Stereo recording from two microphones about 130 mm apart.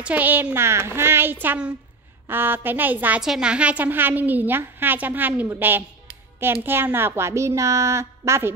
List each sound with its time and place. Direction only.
0.0 s a woman's voice: 15° right (ahead or behind)